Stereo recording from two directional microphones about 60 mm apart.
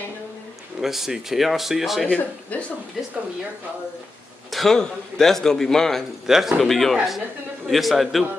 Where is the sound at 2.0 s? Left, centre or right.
Centre.